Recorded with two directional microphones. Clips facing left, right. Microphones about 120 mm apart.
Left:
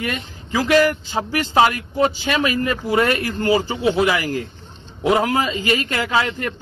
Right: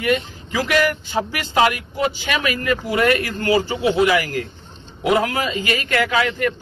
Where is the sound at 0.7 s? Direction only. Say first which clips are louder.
Left 4 dB; 30° left (ahead or behind).